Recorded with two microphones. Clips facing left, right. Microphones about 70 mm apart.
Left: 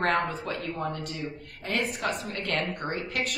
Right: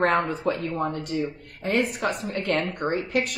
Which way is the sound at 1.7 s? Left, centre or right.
Centre.